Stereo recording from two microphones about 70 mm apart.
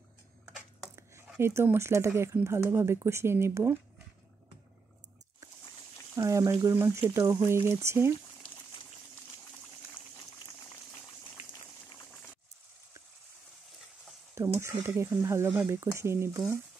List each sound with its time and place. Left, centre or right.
1.4 s speech: right
6.1 s speech: right
6.6 s speech: right
14.3 s speech: right